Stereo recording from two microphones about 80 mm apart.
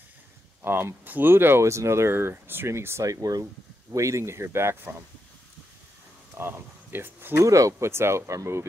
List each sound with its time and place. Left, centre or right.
0.7 s speech: right
6.3 s speech: right
7.4 s speech: right